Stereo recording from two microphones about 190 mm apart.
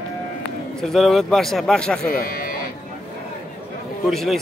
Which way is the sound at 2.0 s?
50° left (ahead or behind).